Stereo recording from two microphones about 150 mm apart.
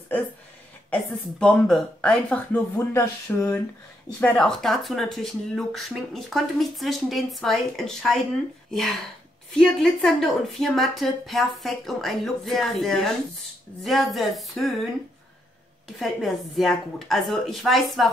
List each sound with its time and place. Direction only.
0.8 s speech: 5° left (ahead or behind)
4.2 s speech: 5° left (ahead or behind)
9.6 s speech: 5° left (ahead or behind)
16.0 s speech: centre (ahead or behind)